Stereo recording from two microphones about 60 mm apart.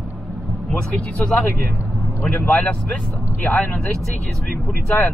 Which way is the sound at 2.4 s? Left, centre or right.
Left.